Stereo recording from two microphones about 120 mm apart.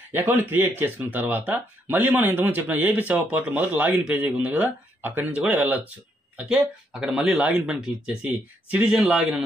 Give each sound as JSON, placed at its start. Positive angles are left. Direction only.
{"t": 0.1, "sound": "speech", "side_deg": -15}